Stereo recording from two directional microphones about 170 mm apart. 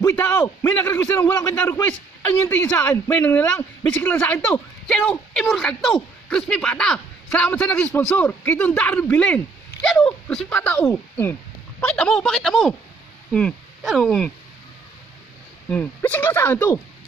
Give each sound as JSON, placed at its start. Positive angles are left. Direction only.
{"t": 0.1, "sound": "a man's voice", "side_deg": 10}
{"t": 15.7, "sound": "a man's voice", "side_deg": 10}